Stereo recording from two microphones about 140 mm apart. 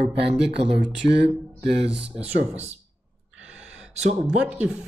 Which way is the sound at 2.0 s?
10° right (ahead or behind).